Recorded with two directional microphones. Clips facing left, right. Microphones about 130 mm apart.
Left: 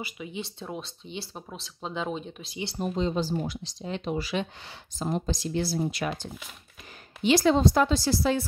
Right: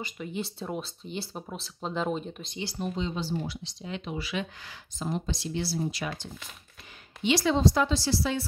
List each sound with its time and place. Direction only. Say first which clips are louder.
0.0 s speech: right 1 dB; centre (ahead or behind)
2.8 s speech: left 5 dB; 40° left (ahead or behind)
5.8 s speech: left 3 dB; 55° left (ahead or behind)
7.2 s speech: left 3 dB; 45° left (ahead or behind)